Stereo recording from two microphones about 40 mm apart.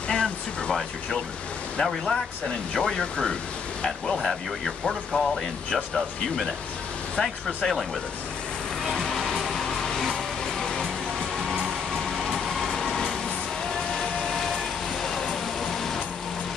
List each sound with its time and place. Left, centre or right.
0.1 s a sound: centre
1.8 s speech: centre
8.9 s music: centre
12.2 s vehicle: centre
15.6 s music: centre